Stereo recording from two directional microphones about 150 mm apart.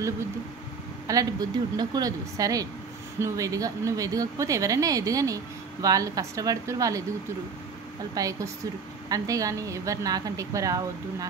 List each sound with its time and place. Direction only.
1.0 s speech: 25° right (ahead or behind)
8.1 s speech: 25° right (ahead or behind)